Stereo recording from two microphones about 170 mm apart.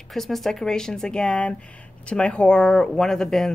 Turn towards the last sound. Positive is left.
turn(degrees=0)  # may be behind; listen again after turning